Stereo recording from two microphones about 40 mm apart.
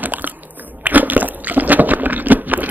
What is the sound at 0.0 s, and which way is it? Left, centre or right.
Crunch, right.